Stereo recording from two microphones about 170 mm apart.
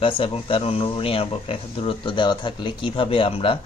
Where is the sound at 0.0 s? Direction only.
30° left (ahead or behind).